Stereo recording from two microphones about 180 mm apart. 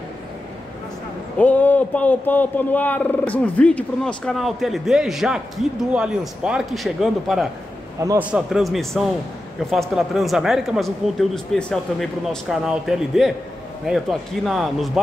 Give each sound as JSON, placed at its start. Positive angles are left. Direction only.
{"t": 1.4, "sound": "a man's voice", "side_deg": 10}
{"t": 8.0, "sound": "a man's voice", "side_deg": -15}
{"t": 8.3, "sound": "a man's voice", "side_deg": -5}